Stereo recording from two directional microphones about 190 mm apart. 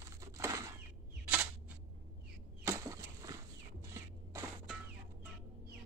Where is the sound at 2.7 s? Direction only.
15° right (ahead or behind).